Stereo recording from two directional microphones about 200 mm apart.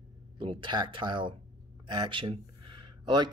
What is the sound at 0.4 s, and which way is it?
Speech, 25° right (ahead or behind).